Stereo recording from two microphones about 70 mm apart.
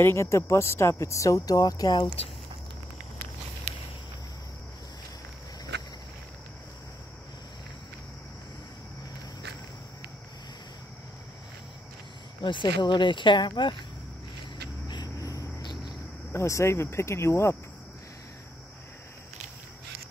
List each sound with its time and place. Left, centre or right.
0.0 s speech: left
12.4 s speech: left
14.9 s cricket: left
16.4 s speech: left